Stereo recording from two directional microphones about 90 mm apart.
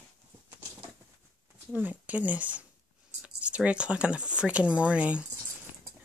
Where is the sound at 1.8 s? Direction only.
20° right (ahead or behind).